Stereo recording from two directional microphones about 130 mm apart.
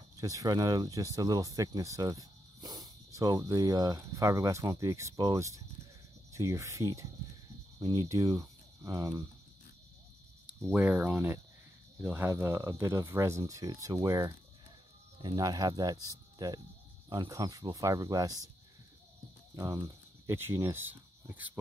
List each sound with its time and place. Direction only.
0.2 s speech: 25° right (ahead or behind)
10.7 s speech: 15° right (ahead or behind)
19.5 s speech: 25° right (ahead or behind)